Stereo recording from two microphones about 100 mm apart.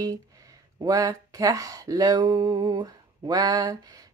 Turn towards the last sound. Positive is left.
turn(degrees=-35)  # may be behind; listen again after turning